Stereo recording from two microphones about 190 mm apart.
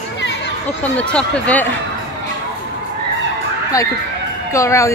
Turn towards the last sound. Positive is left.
turn(degrees=15)  # may be behind; listen again after turning